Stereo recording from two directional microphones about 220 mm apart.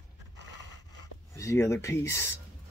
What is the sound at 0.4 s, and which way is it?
Zipper, 55° right (ahead or behind).